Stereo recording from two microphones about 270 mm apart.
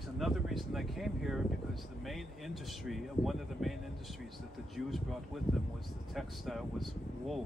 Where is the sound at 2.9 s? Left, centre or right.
Centre.